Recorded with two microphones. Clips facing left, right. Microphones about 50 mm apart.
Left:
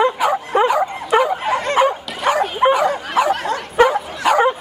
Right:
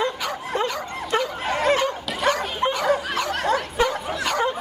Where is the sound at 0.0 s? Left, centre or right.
Centre.